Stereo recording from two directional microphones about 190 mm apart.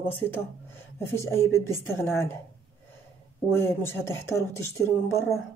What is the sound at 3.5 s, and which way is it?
A woman's voice, 10° left (ahead or behind).